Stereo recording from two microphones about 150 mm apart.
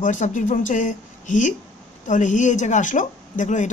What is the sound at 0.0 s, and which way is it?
Speech, 55° left (ahead or behind).